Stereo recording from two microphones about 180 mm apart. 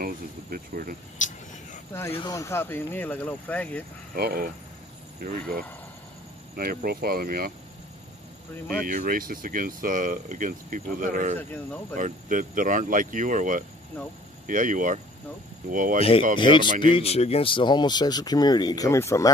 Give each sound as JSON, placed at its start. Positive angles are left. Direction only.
{"t": 0.0, "sound": "speech", "side_deg": -55}
{"t": 1.2, "sound": "speech", "side_deg": 45}
{"t": 2.1, "sound": "speech", "side_deg": 20}
{"t": 4.1, "sound": "speech", "side_deg": -55}
{"t": 8.8, "sound": "speech", "side_deg": -50}
{"t": 16.0, "sound": "speech", "side_deg": 30}